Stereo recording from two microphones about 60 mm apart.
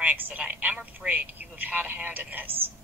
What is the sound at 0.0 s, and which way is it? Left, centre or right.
A woman's voice, right.